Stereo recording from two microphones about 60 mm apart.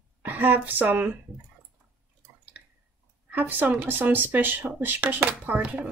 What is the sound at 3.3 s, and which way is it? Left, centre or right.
Speech, right.